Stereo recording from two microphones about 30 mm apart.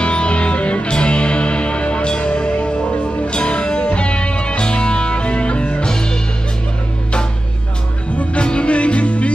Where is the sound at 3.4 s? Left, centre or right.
Left.